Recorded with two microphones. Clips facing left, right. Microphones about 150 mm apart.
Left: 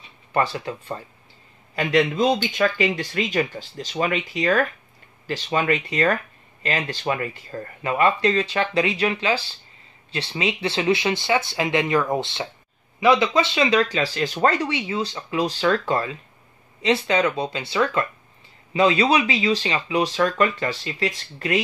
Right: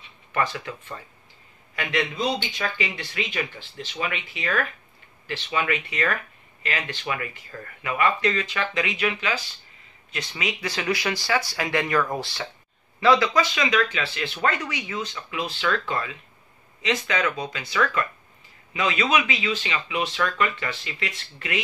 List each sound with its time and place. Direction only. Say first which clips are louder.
0.3 s speech: left 4 dB; 30° left (ahead or behind)